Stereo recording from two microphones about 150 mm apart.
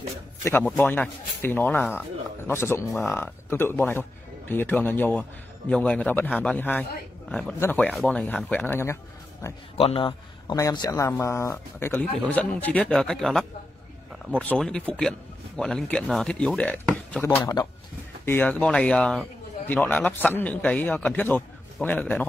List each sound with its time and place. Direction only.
0.4 s speech: 15° left (ahead or behind)
9.8 s speech: 40° left (ahead or behind)
10.5 s speech: 25° left (ahead or behind); by 17.2 s 10° left (ahead or behind)
17.2 s speech: 25° left (ahead or behind)